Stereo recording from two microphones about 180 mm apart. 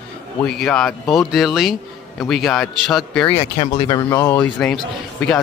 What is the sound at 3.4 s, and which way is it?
Speech, 35° left (ahead or behind).